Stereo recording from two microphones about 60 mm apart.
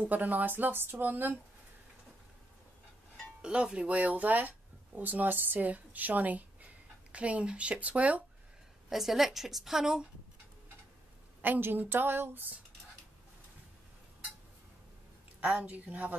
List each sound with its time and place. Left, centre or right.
0.1 s speech: right
3.4 s speech: centre
8.8 s a woman's voice: centre
11.4 s speech: right
15.4 s a woman's voice: right